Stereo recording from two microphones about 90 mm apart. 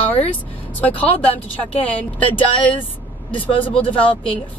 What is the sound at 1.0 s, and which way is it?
Speech, 90° left.